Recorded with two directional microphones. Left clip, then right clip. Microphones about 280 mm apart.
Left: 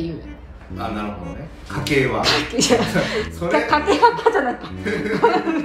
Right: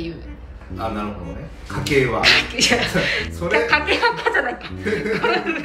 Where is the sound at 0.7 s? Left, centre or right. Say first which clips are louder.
Right 1 dB; centre.